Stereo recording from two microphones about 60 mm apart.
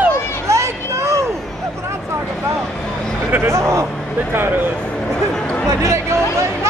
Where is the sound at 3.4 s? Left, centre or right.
Right.